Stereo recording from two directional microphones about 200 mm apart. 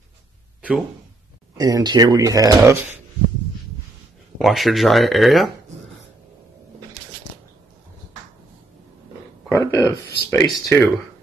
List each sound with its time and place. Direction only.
0.6 s a sound: 5° right (ahead or behind)
1.6 s speech: 20° right (ahead or behind)
4.4 s speech: centre (ahead or behind)
9.5 s speech: 15° left (ahead or behind)